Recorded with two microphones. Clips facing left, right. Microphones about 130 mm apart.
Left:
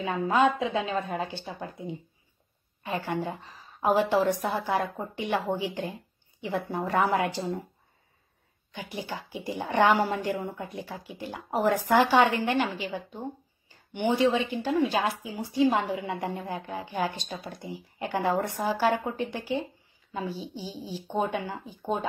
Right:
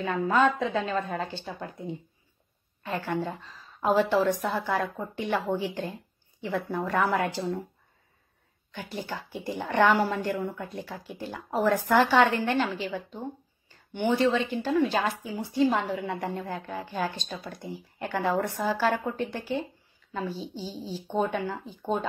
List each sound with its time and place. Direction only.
0.0 s a woman's voice: 15° left (ahead or behind)
8.7 s a woman's voice: 15° left (ahead or behind)